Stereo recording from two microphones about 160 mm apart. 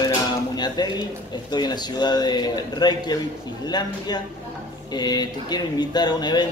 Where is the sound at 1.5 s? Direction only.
25° left (ahead or behind).